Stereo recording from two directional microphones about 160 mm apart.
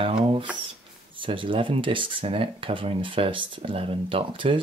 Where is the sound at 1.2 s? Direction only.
30° right (ahead or behind).